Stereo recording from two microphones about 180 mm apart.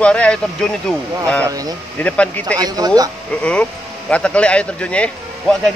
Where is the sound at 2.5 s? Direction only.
20° right (ahead or behind).